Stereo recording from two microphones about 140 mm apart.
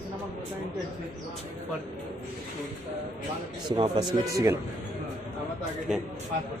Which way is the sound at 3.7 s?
30° right (ahead or behind).